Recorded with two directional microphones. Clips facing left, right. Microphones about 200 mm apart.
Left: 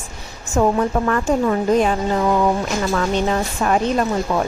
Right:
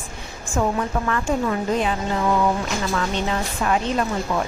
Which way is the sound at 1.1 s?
40° left (ahead or behind).